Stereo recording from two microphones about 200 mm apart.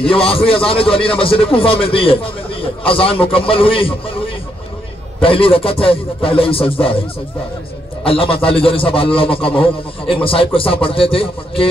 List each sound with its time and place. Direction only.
0.0 s a man's voice: 30° left (ahead or behind)
5.2 s a man's voice: 25° left (ahead or behind)
8.0 s a man's voice: 25° left (ahead or behind)